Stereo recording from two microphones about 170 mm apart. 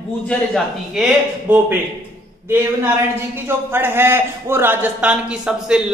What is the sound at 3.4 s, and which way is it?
A man's voice, 10° right (ahead or behind).